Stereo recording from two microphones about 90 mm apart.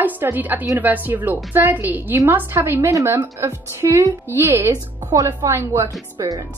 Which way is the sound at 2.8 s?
35° right (ahead or behind).